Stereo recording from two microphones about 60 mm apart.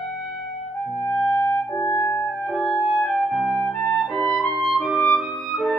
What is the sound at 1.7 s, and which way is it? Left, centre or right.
Clarinet, centre.